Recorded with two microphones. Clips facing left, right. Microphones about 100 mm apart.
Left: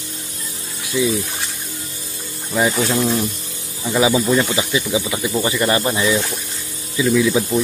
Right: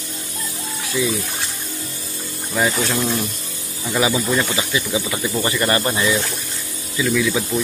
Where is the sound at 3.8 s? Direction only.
15° left (ahead or behind).